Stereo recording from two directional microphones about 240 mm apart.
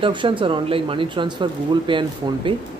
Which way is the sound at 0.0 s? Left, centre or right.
Centre.